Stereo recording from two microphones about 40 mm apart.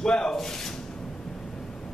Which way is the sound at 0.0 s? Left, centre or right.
Centre.